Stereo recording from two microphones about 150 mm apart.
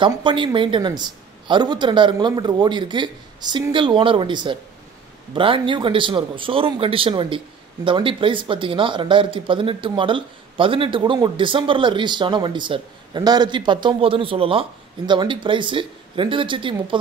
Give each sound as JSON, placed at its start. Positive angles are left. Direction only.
{"t": 0.0, "sound": "speech", "side_deg": -35}